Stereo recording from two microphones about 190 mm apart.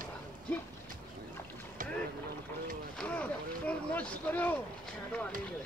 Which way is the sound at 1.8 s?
45° right (ahead or behind).